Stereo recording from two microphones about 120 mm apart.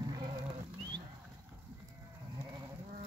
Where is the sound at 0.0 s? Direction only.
35° right (ahead or behind).